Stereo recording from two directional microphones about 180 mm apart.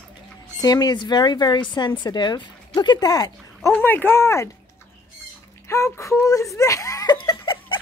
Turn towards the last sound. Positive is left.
turn(degrees=25)  # may be behind; listen again after turning